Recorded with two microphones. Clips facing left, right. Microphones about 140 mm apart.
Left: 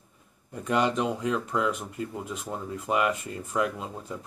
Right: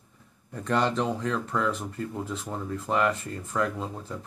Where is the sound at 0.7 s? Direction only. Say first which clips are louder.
Even; 10° left (ahead or behind).